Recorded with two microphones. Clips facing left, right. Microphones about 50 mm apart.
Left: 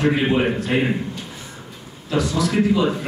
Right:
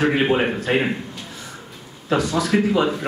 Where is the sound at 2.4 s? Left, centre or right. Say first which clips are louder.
Left 2 dB; right.